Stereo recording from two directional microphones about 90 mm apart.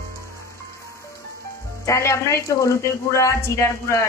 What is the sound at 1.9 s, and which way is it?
A woman's voice, 35° left (ahead or behind).